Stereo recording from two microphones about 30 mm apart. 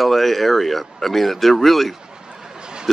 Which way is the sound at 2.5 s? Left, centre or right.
Right.